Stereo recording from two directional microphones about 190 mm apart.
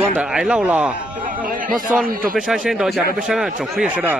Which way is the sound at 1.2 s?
45° right (ahead or behind).